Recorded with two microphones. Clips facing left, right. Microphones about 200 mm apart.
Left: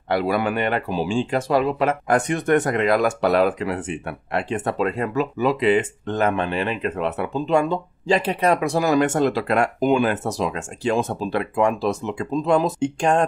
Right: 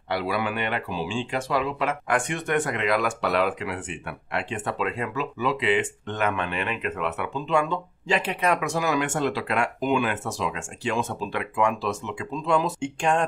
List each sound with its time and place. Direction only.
0.1 s speech: 50° left (ahead or behind)